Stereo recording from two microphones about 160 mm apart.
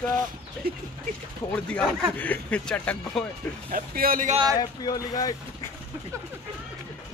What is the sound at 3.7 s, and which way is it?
Speech, 65° right (ahead or behind).